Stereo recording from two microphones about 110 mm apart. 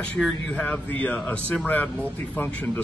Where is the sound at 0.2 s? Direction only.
5° left (ahead or behind).